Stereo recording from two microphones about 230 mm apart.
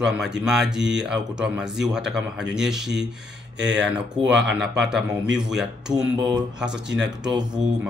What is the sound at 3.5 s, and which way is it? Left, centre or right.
Speech, right.